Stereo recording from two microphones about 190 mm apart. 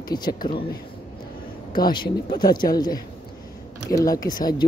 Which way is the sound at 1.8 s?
25° left (ahead or behind).